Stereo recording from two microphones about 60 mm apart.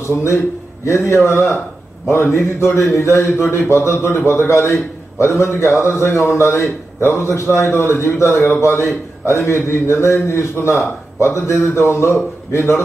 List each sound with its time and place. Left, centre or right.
0.0 s a man's voice: left